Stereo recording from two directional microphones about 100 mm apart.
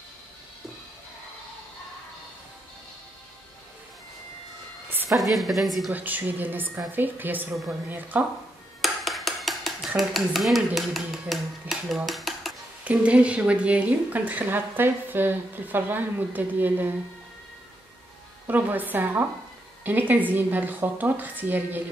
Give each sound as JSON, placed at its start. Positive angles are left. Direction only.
{"t": 5.1, "sound": "a woman's voice", "side_deg": 0}
{"t": 5.9, "sound": "speech", "side_deg": -15}
{"t": 8.8, "sound": "dishes", "side_deg": 0}
{"t": 12.8, "sound": "speech", "side_deg": -15}
{"t": 18.5, "sound": "speech", "side_deg": -20}